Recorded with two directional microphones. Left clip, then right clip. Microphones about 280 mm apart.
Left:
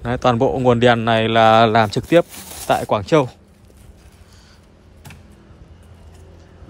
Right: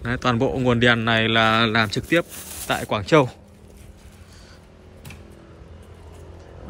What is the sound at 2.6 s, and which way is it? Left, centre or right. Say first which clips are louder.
Speech: left 5 dB; centre.